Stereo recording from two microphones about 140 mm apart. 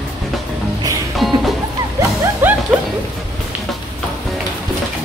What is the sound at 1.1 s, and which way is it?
Music, centre (ahead or behind).